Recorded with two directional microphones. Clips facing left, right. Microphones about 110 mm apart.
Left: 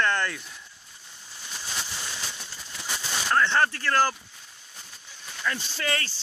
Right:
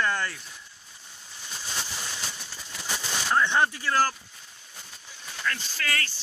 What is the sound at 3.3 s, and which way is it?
Speech, 15° right (ahead or behind).